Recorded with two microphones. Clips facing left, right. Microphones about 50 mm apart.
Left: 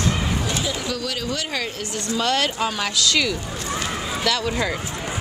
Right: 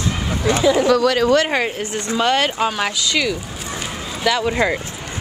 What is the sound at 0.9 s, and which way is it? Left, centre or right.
Speech, right.